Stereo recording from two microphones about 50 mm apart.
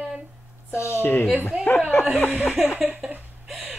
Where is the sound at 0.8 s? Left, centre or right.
Left.